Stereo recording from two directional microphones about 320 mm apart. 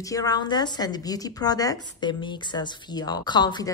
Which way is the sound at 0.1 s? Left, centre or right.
Centre.